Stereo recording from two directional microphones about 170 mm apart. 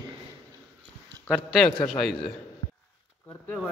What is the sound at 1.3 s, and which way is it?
Speech, 5° right (ahead or behind).